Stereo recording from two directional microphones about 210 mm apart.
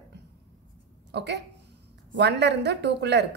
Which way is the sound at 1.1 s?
50° right (ahead or behind).